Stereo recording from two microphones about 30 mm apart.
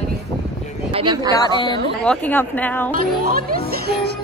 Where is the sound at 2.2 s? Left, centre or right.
Left.